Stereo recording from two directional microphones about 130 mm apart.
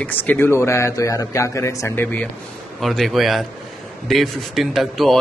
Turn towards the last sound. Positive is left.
turn(degrees=0)  # may be behind; listen again after turning